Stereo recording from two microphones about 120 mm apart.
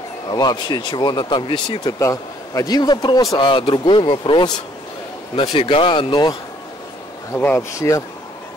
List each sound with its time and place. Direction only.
0.3 s speech: 35° left (ahead or behind)
3.3 s speech: 40° left (ahead or behind)
7.3 s speech: 15° left (ahead or behind)
7.7 s speech: 25° left (ahead or behind)